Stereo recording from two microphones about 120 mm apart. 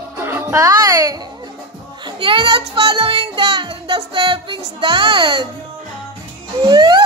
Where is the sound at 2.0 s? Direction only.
45° right (ahead or behind).